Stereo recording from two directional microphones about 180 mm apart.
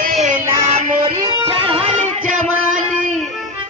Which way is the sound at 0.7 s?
35° right (ahead or behind).